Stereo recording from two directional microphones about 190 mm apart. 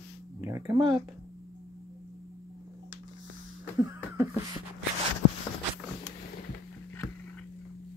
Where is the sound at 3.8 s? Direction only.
15° right (ahead or behind).